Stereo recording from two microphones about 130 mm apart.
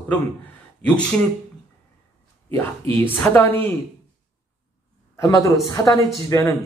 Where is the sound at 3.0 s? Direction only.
15° left (ahead or behind).